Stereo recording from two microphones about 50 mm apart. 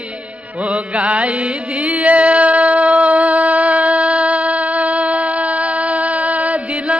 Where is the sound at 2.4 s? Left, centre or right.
Right.